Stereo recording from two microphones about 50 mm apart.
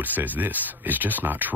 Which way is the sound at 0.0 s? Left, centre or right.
Right.